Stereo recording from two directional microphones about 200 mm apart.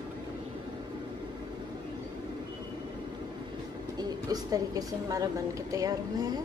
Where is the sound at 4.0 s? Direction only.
20° right (ahead or behind).